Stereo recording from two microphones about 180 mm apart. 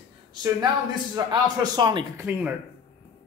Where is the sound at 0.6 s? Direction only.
25° right (ahead or behind).